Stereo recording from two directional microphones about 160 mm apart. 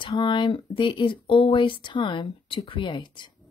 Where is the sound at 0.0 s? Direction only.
30° left (ahead or behind).